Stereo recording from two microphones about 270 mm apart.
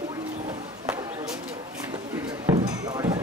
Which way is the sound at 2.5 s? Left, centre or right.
Centre.